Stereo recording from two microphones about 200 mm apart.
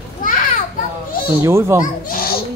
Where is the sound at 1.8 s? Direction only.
45° left (ahead or behind).